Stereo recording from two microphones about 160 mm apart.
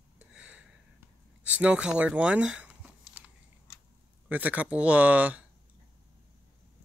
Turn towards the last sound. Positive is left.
turn(degrees=-10)  # may be behind; listen again after turning